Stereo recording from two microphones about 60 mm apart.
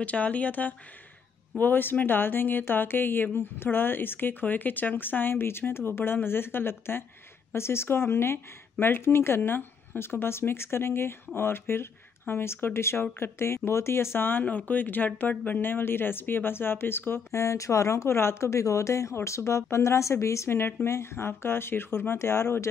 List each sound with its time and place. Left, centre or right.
0.0 s speech: left
17.3 s speech: left